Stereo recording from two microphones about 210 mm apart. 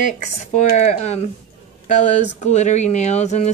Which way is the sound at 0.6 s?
35° left (ahead or behind).